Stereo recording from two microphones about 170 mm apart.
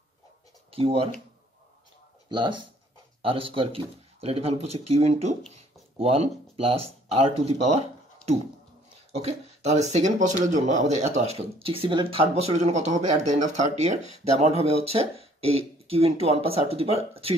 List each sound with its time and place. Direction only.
0.7 s speech: 35° right (ahead or behind)
2.2 s speech: 30° right (ahead or behind)
9.1 s speech: 40° right (ahead or behind)